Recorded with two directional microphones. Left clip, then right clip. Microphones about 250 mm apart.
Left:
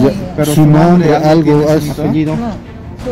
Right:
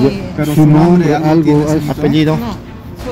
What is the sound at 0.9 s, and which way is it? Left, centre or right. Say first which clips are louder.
Speech: left 2 dB; left.